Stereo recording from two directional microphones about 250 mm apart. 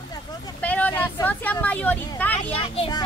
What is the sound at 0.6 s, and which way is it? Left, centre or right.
Speech, centre.